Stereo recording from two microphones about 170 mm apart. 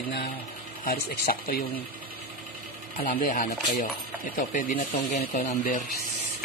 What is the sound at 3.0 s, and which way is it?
Speech, 60° left (ahead or behind).